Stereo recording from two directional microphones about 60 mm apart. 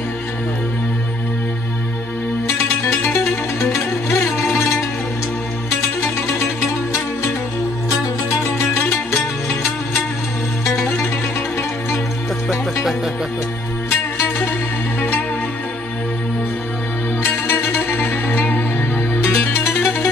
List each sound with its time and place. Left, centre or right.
3.0 s music: left
8.7 s music: left
12.4 s music: centre
13.8 s music: left
15.0 s music: left
17.2 s music: left